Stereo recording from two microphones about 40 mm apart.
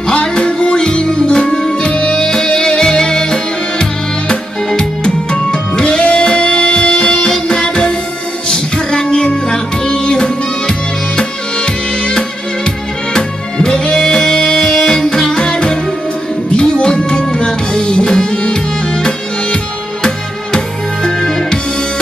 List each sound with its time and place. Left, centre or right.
0.0 s music: left